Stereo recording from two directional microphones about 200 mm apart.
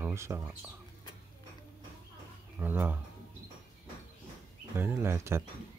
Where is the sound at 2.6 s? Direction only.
10° right (ahead or behind).